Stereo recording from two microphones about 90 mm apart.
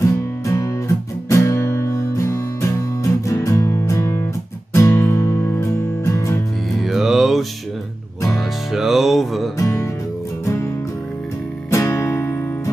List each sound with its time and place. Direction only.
0.5 s music: 35° left (ahead or behind)
6.8 s music: 5° right (ahead or behind)
8.7 s music: 5° right (ahead or behind)
9.6 s music: 30° left (ahead or behind)
11.7 s music: 35° left (ahead or behind)